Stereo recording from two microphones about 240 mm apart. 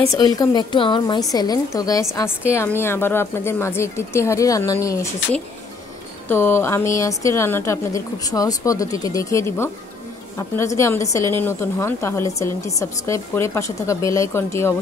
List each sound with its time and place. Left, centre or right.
0.1 s a woman's voice: centre